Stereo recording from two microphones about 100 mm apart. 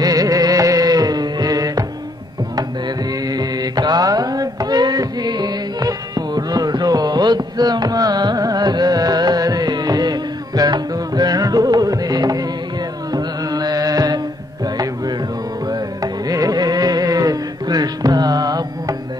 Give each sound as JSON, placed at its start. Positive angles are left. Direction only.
{"t": 0.0, "sound": "music", "side_deg": -40}
{"t": 3.3, "sound": "music", "side_deg": -40}
{"t": 13.1, "sound": "carnatic music", "side_deg": -40}
{"t": 15.7, "sound": "carnatic music", "side_deg": -40}